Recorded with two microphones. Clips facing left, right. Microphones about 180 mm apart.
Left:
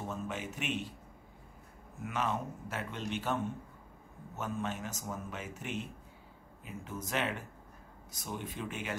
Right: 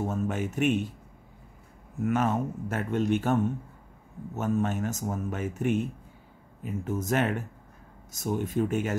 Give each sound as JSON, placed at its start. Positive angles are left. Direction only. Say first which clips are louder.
{"t": 0.0, "sound": "speech", "louder": "right 9 dB", "side_deg": -50}
{"t": 2.0, "sound": "speech", "louder": "right 9 dB", "side_deg": -50}
{"t": 4.4, "sound": "speech", "louder": "right 10 dB", "side_deg": -50}